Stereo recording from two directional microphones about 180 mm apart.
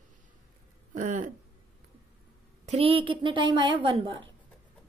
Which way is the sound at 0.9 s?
45° right (ahead or behind).